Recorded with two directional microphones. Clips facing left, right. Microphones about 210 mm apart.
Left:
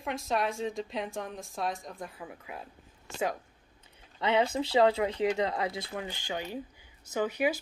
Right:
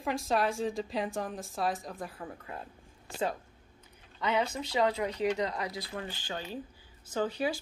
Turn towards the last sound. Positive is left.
turn(degrees=10)  # may be behind; listen again after turning